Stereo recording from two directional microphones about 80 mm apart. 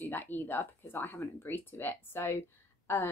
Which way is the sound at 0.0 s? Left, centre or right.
Left.